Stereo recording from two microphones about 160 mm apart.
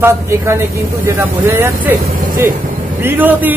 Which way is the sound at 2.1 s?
60° right (ahead or behind).